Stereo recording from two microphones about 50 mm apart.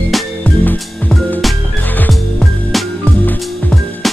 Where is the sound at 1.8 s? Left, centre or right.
Left.